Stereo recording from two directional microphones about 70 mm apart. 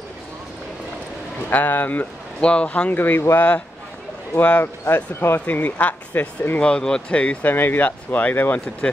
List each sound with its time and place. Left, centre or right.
1.5 s speech: left
2.9 s speech: left
6.6 s speech: centre
7.5 s speech: left